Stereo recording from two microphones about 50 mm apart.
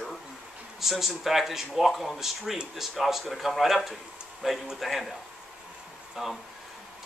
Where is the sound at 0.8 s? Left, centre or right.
Centre.